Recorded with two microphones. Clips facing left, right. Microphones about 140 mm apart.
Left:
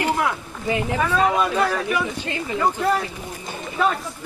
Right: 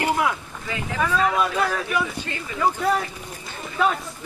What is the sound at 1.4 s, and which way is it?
Speech, 5° left (ahead or behind).